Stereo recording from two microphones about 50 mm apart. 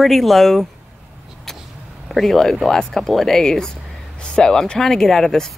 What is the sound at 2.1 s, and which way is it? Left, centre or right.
Speech, centre.